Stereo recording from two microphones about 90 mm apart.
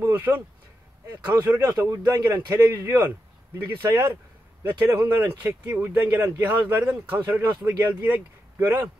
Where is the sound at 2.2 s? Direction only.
25° right (ahead or behind).